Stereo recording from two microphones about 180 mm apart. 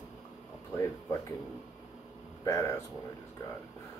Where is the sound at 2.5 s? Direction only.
15° left (ahead or behind).